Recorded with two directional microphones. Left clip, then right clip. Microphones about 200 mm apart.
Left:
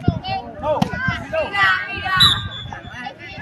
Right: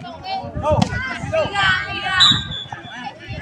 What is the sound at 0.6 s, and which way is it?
Chop, 25° right (ahead or behind).